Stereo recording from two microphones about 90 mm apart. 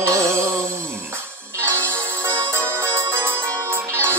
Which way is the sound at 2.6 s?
25° right (ahead or behind).